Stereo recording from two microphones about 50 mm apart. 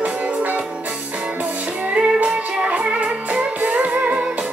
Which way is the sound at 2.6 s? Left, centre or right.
Right.